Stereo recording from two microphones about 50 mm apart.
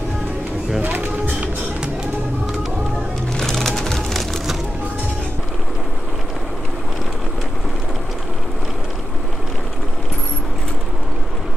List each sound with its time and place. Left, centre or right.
0.8 s music: right
3.3 s music: centre